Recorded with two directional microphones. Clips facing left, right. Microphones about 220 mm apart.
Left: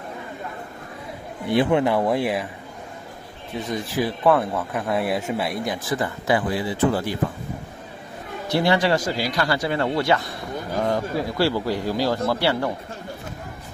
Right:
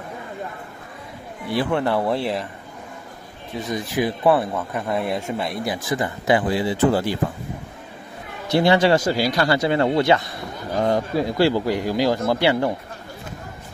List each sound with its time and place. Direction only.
1.5 s speech: 20° left (ahead or behind)
3.7 s speech: 15° right (ahead or behind)
4.4 s speech: centre (ahead or behind)
5.7 s speech: 15° right (ahead or behind)
8.5 s speech: 25° right (ahead or behind)